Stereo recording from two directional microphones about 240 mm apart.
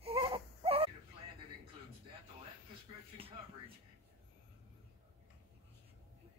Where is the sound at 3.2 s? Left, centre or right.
Right.